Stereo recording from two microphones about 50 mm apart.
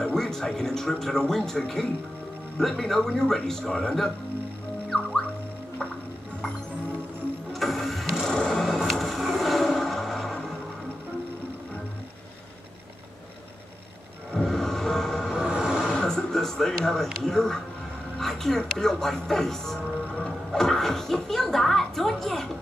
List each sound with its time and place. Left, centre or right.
0.0 s speech: centre
4.8 s music: centre
7.5 s vehicle: centre
8.3 s music: centre
14.3 s vehicle: centre
15.5 s a sound: centre
15.9 s a sound: centre
18.2 s speech: centre
20.2 s music: centre